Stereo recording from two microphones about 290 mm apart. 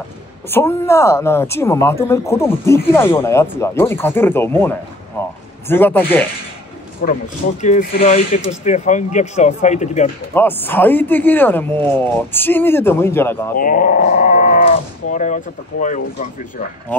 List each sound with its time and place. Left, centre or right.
0.5 s speech: centre
7.0 s speech: left
10.3 s speech: centre
13.6 s speech: left